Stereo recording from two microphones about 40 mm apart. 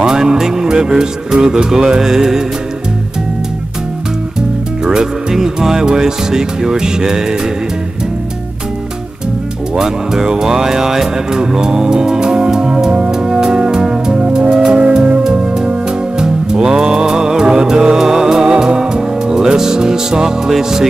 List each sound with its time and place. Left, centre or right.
0.0 s music: centre
4.8 s music: centre
9.8 s music: centre